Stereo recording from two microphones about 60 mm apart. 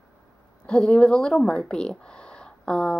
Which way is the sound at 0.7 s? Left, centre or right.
Centre.